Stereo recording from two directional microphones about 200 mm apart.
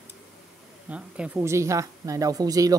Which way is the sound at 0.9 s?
5° right (ahead or behind).